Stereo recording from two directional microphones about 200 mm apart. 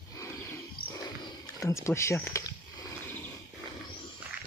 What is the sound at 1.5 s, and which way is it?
Speech, 15° left (ahead or behind).